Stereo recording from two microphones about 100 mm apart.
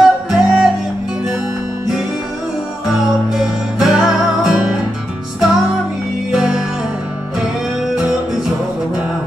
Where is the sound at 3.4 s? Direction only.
5° right (ahead or behind).